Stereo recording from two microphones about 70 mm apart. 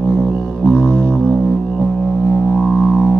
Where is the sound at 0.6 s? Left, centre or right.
Left.